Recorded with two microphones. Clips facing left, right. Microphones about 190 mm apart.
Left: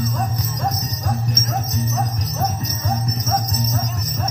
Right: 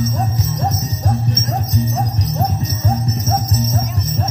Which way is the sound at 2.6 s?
30° right (ahead or behind).